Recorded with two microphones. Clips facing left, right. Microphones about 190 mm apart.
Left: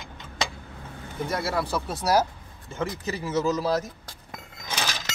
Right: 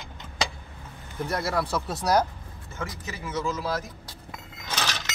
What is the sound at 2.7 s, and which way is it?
Speech, 35° left (ahead or behind).